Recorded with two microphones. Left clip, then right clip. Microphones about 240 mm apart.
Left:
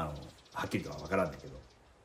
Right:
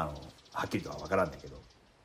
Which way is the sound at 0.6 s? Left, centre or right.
Centre.